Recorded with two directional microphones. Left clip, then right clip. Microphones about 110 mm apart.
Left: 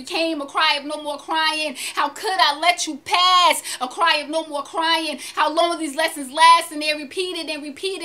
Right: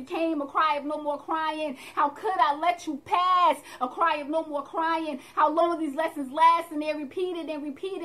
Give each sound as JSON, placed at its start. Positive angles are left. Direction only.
{"t": 0.1, "sound": "speech", "side_deg": 25}